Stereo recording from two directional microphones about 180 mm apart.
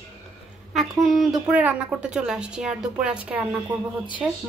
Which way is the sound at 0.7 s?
Centre (ahead or behind).